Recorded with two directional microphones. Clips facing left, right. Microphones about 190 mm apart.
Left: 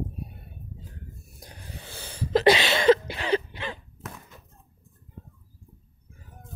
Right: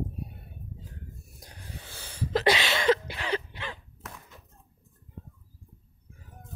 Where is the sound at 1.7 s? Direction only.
25° left (ahead or behind).